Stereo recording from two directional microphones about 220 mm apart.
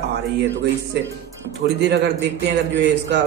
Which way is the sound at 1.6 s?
50° right (ahead or behind).